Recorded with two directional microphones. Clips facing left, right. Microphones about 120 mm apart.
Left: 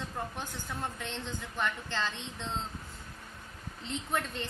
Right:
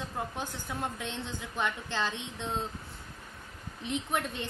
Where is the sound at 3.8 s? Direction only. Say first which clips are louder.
Right 2 dB; 15° right (ahead or behind).